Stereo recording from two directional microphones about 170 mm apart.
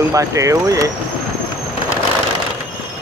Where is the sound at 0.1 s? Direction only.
20° right (ahead or behind).